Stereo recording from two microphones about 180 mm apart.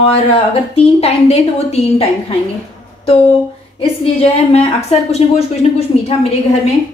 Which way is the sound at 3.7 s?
35° left (ahead or behind).